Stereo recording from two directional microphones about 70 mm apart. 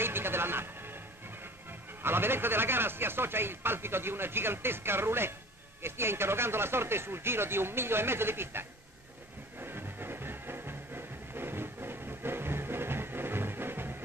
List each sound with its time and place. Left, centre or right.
0.0 s music: right
1.7 s a man's voice: right
9.6 s music: right